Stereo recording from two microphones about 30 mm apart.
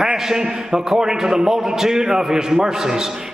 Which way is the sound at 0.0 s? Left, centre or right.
Centre.